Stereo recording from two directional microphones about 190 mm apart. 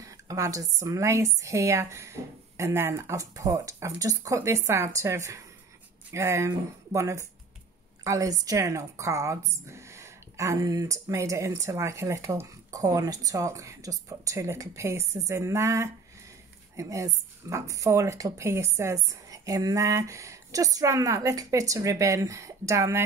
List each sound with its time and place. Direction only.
0.0 s a woman's voice: 15° right (ahead or behind)